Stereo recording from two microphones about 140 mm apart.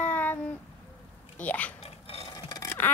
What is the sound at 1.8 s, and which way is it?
Filing, 45° left (ahead or behind).